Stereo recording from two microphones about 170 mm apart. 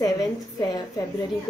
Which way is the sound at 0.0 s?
25° left (ahead or behind).